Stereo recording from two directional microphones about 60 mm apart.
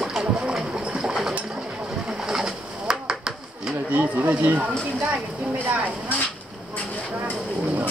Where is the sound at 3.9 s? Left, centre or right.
Right.